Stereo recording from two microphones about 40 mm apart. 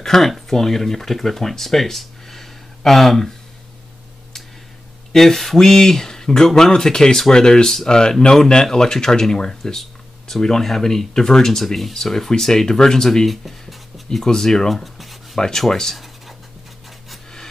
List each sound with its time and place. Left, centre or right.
0.0 s speech: centre
5.1 s speech: centre
13.3 s speech: centre
14.2 s speech: centre
15.3 s speech: centre